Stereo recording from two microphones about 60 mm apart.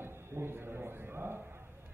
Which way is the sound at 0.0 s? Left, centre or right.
Right.